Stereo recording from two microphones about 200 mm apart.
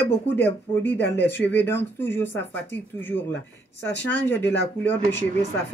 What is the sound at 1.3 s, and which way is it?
A man's voice, 10° left (ahead or behind).